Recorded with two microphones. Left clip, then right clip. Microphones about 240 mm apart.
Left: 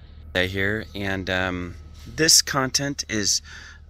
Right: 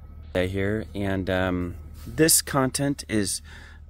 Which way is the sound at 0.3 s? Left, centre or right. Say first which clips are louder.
Left 3 dB; centre.